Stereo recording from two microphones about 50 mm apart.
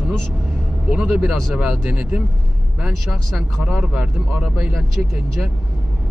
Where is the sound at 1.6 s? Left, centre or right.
Centre.